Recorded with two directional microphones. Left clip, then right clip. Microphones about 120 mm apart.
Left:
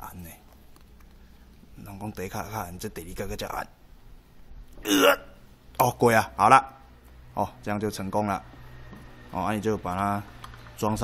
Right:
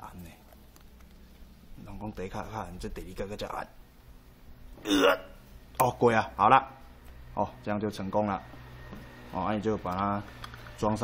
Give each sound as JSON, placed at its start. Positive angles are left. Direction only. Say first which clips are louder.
{"t": 0.0, "sound": "a sound", "louder": "left 4 dB", "side_deg": 45}
{"t": 1.9, "sound": "speech", "louder": "left 3 dB", "side_deg": 45}
{"t": 4.8, "sound": "speech", "louder": "left 4 dB", "side_deg": 45}